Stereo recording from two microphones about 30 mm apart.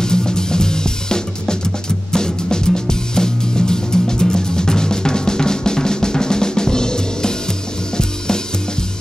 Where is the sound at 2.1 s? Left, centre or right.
Left.